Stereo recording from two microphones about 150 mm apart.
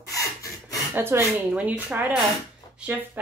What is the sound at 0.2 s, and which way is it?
Rub, 20° left (ahead or behind).